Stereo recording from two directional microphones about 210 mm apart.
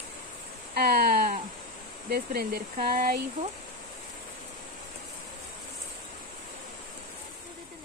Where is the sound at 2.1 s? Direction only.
45° right (ahead or behind).